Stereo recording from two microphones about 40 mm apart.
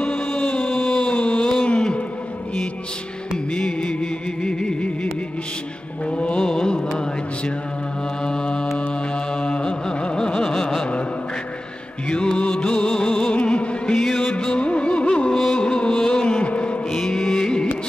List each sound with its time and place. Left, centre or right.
0.0 s music: left
1.4 s a sound: centre
3.5 s music: left
6.0 s mantra: left
6.4 s music: centre
8.3 s mantra: centre
9.4 s carnatic music: left
10.4 s carnatic music: centre
12.1 s music: left
13.9 s music: centre
14.4 s music: left
15.5 s a sound: left
16.9 s music: centre